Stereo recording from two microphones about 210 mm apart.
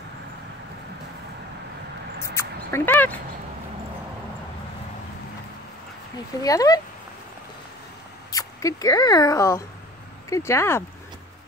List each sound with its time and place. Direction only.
2.3 s speech: 10° left (ahead or behind)
6.1 s speech: 15° left (ahead or behind)
8.3 s speech: 15° left (ahead or behind)